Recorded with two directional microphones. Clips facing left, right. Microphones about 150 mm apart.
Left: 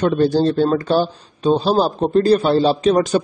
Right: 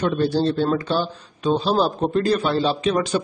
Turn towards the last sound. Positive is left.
turn(degrees=40)  # may be behind; listen again after turning